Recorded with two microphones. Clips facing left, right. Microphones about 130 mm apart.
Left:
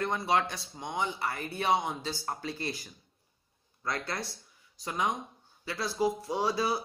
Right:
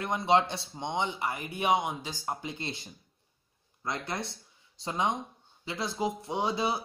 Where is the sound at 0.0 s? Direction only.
20° right (ahead or behind).